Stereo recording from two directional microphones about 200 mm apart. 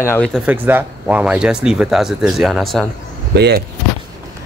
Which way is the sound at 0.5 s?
10° right (ahead or behind).